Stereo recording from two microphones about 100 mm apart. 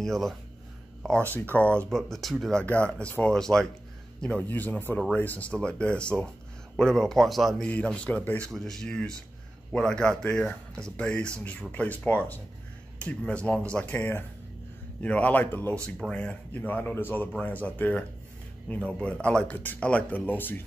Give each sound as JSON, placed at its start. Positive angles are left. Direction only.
{"t": 0.0, "sound": "speech", "side_deg": 5}
{"t": 1.3, "sound": "speech", "side_deg": 15}
{"t": 1.9, "sound": "a man's voice", "side_deg": 5}
{"t": 7.6, "sound": "speech", "side_deg": 10}
{"t": 8.5, "sound": "a man's voice", "side_deg": 5}